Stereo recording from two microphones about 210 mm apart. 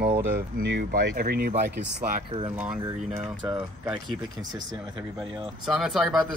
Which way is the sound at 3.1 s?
25° right (ahead or behind).